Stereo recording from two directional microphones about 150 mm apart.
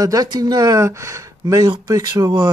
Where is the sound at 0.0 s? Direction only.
25° right (ahead or behind).